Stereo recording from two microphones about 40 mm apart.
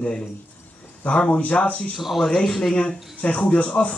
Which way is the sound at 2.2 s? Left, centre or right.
Centre.